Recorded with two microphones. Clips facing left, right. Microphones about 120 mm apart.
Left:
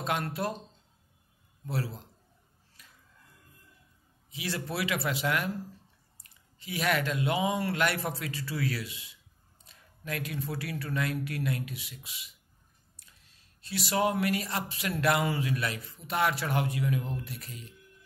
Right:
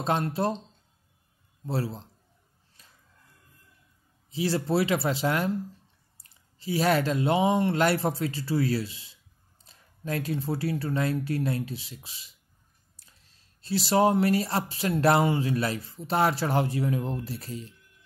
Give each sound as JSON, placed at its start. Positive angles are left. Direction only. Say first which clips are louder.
{"t": 0.0, "sound": "speech", "louder": "right 5 dB", "side_deg": -30}
{"t": 1.7, "sound": "speech", "louder": "right 4 dB", "side_deg": -30}
{"t": 2.8, "sound": "a sound", "louder": "left 1 dB", "side_deg": -30}
{"t": 4.3, "sound": "speech", "louder": "right 9 dB", "side_deg": -30}